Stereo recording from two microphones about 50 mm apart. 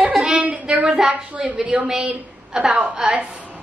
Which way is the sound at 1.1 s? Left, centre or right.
Right.